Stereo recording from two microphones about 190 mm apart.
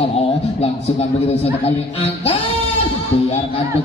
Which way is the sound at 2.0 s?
30° left (ahead or behind).